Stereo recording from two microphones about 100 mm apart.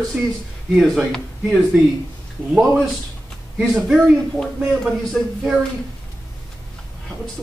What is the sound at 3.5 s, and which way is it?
Speech, 10° right (ahead or behind).